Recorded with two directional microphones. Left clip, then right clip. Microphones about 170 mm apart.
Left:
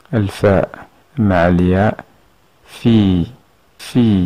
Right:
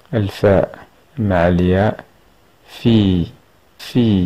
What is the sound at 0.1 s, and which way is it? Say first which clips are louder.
Speech: even; 20° left (ahead or behind).